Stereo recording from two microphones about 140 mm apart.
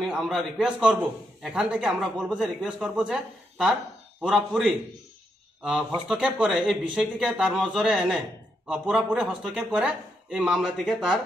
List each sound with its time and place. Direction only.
0.0 s a man's voice: centre (ahead or behind)